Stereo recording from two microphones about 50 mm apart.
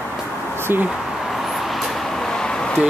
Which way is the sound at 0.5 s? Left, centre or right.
Right.